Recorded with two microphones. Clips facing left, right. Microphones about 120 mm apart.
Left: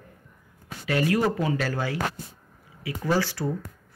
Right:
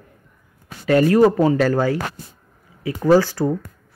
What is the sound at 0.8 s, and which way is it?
Speech, 40° right (ahead or behind).